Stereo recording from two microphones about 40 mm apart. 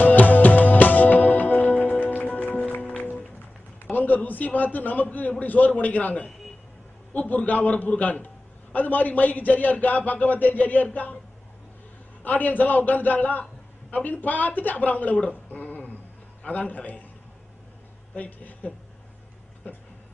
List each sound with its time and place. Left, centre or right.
0.0 s music: left
3.8 s a sound: left
4.7 s a man's voice: left
12.2 s a man's voice: left
15.6 s a sound: left
16.4 s a man's voice: left
18.1 s speech: left